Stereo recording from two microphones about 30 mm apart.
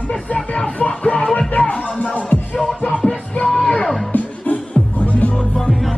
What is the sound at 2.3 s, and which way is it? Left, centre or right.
Music, left.